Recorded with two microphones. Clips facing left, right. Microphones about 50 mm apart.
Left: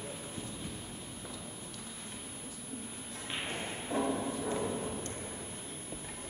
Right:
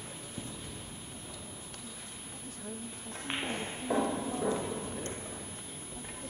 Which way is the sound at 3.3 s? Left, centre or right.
Centre.